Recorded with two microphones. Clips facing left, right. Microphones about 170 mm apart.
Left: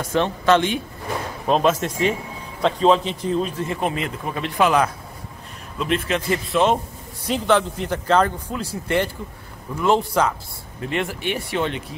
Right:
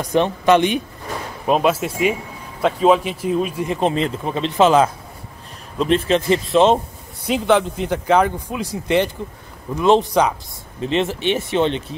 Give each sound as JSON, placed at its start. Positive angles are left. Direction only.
{"t": 0.0, "sound": "speech", "side_deg": -15}
{"t": 1.5, "sound": "speech", "side_deg": -5}
{"t": 7.2, "sound": "speech", "side_deg": -15}